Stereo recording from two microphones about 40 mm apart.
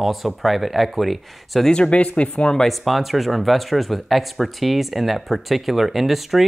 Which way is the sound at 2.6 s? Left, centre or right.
Centre.